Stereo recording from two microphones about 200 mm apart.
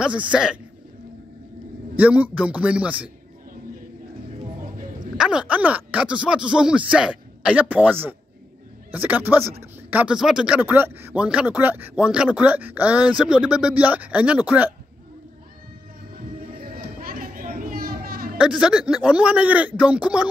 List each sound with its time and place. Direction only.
0.0 s speech: 5° right (ahead or behind)
2.0 s speech: 5° right (ahead or behind)
5.1 s speech: 5° right (ahead or behind)
16.6 s a sound: 45° right (ahead or behind)
18.4 s speech: 5° right (ahead or behind)